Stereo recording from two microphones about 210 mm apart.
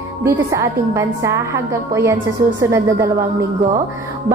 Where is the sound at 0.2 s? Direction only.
15° right (ahead or behind).